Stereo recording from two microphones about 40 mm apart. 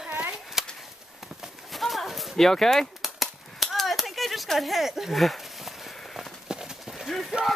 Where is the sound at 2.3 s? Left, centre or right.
Centre.